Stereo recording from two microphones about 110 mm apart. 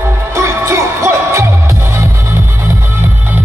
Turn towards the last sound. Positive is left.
turn(degrees=-25)  # may be behind; listen again after turning